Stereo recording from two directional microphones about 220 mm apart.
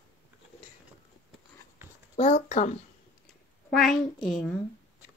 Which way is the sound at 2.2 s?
30° left (ahead or behind).